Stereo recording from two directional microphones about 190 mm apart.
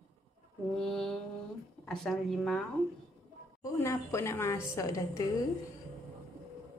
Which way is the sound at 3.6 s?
15° left (ahead or behind).